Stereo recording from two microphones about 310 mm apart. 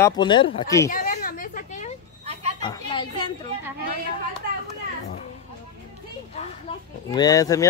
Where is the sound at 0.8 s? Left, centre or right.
Left.